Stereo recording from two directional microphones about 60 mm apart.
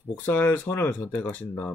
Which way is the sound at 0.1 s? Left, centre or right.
Left.